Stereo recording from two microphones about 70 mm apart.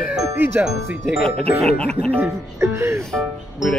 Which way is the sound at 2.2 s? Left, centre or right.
Right.